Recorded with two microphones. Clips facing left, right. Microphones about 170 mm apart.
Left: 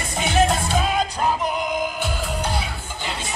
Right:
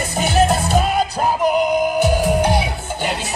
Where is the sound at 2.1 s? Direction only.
65° right (ahead or behind).